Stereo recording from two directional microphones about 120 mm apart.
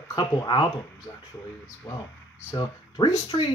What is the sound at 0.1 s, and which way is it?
Speech, 30° left (ahead or behind).